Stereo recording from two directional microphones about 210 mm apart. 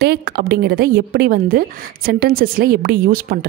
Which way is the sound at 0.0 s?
50° right (ahead or behind).